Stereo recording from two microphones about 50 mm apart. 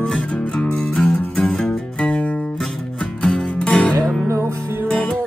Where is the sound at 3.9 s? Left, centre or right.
Right.